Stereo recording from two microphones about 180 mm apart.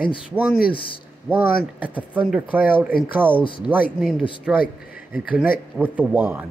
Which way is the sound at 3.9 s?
Centre (ahead or behind).